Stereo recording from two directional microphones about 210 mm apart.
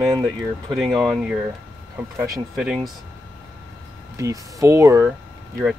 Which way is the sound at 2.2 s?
5° right (ahead or behind).